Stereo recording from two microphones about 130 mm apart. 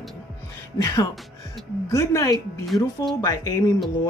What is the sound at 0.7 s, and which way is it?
Speech, 25° left (ahead or behind).